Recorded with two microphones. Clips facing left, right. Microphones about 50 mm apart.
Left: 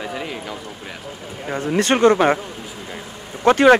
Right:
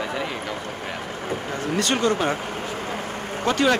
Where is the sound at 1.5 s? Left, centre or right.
Left.